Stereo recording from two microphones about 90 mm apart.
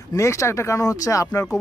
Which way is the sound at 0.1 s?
35° left (ahead or behind).